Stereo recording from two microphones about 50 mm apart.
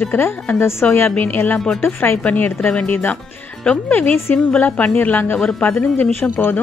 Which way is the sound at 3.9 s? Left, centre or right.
Left.